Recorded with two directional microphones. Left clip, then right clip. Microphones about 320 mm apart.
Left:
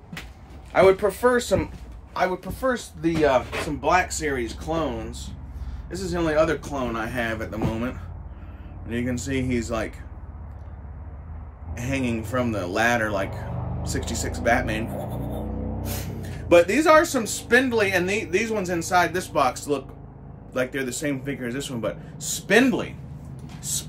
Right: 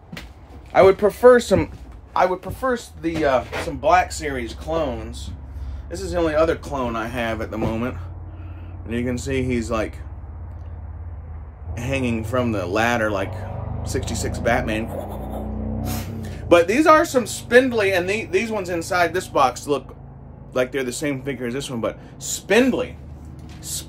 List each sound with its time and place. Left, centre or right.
0.7 s a man's voice: right
2.1 s speech: centre
11.7 s speech: centre
16.2 s speech: centre
23.6 s a sound: centre